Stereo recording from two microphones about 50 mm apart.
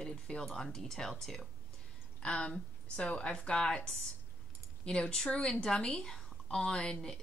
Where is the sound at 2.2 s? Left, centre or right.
Left.